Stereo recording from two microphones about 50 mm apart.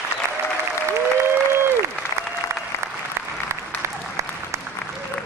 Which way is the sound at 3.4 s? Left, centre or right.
Right.